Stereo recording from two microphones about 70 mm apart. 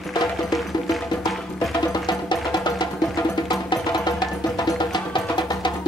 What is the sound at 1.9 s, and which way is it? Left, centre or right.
Music, left.